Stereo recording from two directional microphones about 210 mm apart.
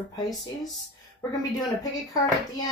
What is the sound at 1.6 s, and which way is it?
A woman's voice, 15° left (ahead or behind).